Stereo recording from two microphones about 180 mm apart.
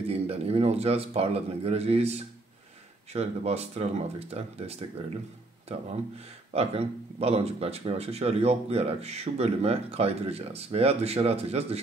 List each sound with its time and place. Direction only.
0.1 s speech: 35° right (ahead or behind)